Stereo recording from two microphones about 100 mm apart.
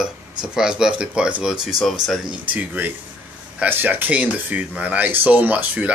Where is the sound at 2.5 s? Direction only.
20° right (ahead or behind).